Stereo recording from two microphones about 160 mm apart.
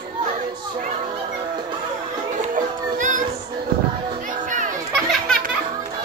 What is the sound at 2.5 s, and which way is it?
Music, 55° right (ahead or behind).